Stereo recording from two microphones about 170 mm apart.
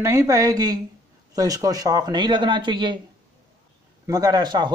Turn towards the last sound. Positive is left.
turn(degrees=-25)  # may be behind; listen again after turning